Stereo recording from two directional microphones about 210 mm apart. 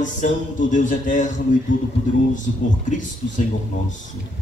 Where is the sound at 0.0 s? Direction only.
35° left (ahead or behind).